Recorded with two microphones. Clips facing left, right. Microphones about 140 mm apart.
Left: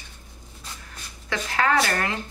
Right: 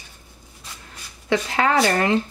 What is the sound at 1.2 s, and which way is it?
Speech, 25° right (ahead or behind).